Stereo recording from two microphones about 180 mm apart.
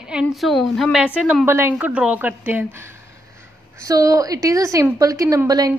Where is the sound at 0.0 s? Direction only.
5° right (ahead or behind).